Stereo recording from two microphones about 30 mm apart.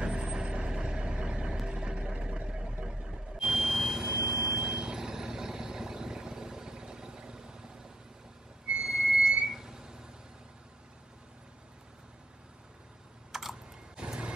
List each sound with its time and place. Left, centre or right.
0.0 s vehicle: right
8.8 s a sound: centre
13.3 s typing: centre
13.9 s vehicle: right